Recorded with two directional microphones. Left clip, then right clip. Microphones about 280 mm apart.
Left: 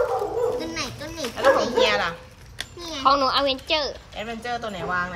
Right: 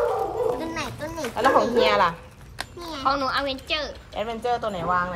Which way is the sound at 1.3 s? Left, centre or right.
Centre.